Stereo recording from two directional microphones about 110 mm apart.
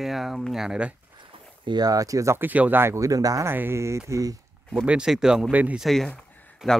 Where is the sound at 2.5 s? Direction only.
15° right (ahead or behind); by 3.5 s 30° right (ahead or behind).